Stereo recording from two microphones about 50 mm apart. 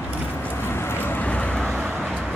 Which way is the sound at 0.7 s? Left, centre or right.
Left.